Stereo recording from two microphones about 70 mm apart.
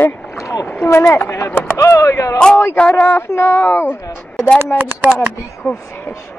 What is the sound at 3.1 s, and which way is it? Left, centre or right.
Speech, left.